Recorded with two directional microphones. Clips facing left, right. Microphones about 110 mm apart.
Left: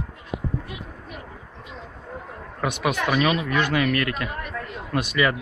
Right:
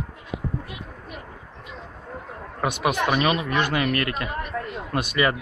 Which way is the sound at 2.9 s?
25° right (ahead or behind).